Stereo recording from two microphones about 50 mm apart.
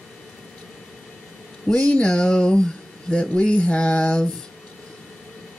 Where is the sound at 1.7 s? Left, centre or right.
Left.